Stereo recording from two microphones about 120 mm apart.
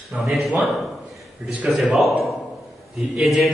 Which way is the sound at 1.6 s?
Centre (ahead or behind).